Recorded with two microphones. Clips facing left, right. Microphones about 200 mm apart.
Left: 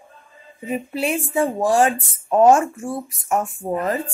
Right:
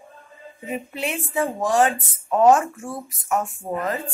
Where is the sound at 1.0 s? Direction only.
30° left (ahead or behind).